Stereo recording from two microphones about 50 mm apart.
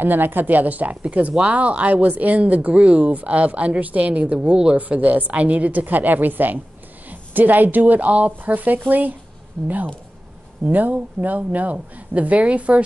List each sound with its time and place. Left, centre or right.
0.0 s a woman's voice: right
1.3 s a woman's voice: right
10.6 s a woman's voice: right